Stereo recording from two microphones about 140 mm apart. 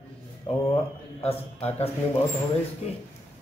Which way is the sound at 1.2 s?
45° left (ahead or behind).